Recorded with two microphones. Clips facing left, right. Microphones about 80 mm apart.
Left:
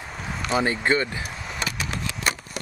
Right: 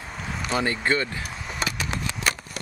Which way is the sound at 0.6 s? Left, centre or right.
Centre.